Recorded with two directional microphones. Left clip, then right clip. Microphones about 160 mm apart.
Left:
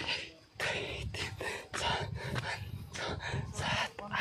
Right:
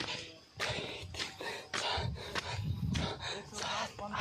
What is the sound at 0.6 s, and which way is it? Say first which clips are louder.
Music: left 3 dB; 30° left (ahead or behind).